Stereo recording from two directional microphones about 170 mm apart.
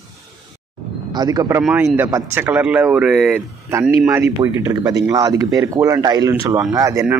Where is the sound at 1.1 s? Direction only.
25° right (ahead or behind); by 4.2 s 5° right (ahead or behind).